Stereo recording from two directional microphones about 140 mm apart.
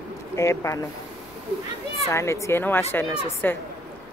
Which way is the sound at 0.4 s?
20° left (ahead or behind).